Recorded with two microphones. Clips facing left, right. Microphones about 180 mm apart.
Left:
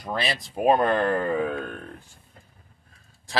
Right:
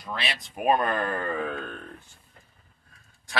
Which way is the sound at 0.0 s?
40° left (ahead or behind).